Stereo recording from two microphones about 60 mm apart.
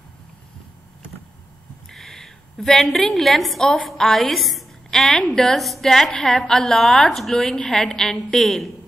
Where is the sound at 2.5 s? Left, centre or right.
Centre.